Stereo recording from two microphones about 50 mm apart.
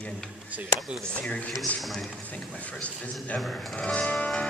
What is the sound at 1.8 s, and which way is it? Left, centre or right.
Speech, centre.